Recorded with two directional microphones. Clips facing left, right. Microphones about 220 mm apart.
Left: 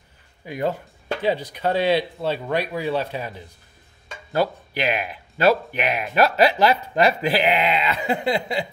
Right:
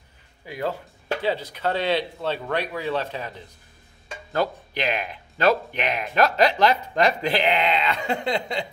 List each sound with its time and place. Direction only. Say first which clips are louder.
0.5 s speech: left 3 dB; 15° left (ahead or behind)